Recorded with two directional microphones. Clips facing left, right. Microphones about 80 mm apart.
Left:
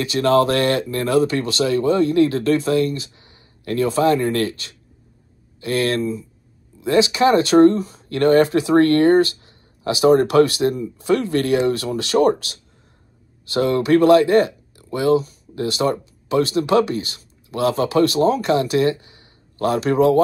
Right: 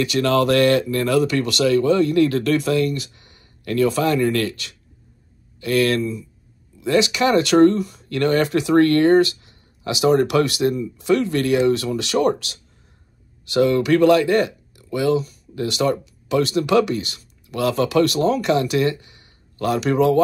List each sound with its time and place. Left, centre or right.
0.0 s speech: left